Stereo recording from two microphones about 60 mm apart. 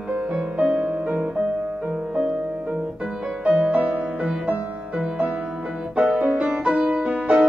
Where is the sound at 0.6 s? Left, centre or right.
Right.